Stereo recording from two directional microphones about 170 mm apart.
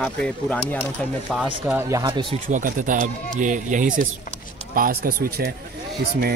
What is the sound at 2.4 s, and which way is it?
Speech, 50° right (ahead or behind).